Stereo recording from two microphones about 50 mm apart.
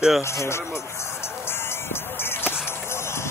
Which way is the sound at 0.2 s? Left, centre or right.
Left.